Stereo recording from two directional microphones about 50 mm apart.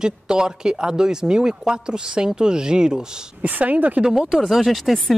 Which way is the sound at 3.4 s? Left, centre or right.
Right.